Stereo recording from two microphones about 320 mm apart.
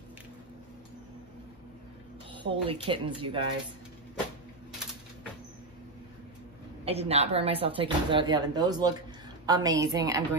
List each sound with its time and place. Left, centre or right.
2.4 s speech: centre
6.8 s speech: centre